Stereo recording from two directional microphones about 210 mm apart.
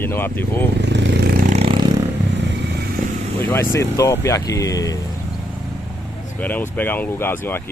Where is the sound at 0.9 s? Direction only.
55° right (ahead or behind); by 1.8 s 30° right (ahead or behind).